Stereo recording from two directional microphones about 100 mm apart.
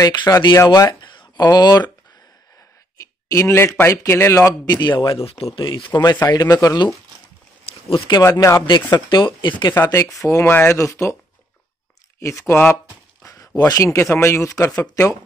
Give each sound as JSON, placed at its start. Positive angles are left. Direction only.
{"t": 0.0, "sound": "speech", "side_deg": 45}
{"t": 3.3, "sound": "speech", "side_deg": 30}
{"t": 4.6, "sound": "speech", "side_deg": 45}
{"t": 6.3, "sound": "speech", "side_deg": 40}
{"t": 8.1, "sound": "speech", "side_deg": 30}
{"t": 8.6, "sound": "speech", "side_deg": 50}
{"t": 9.8, "sound": "speech", "side_deg": 35}
{"t": 12.2, "sound": "speech", "side_deg": 30}
{"t": 13.2, "sound": "a sound", "side_deg": 35}
{"t": 13.7, "sound": "speech", "side_deg": 30}